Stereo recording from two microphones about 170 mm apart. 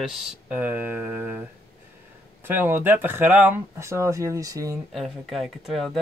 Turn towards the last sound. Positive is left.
turn(degrees=0)  # may be behind; listen again after turning